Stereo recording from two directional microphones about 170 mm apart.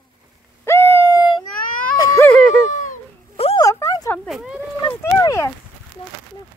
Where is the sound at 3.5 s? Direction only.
15° left (ahead or behind).